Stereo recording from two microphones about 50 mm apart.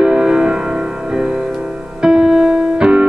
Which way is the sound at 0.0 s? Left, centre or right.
Centre.